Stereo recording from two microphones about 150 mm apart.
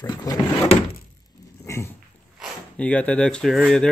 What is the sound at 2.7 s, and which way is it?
Speech, 10° left (ahead or behind).